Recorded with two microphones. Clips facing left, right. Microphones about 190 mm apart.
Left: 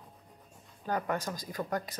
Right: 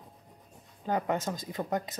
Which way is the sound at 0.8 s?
20° right (ahead or behind).